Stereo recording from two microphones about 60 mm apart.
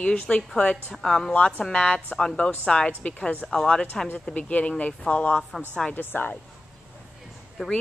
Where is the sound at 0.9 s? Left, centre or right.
Centre.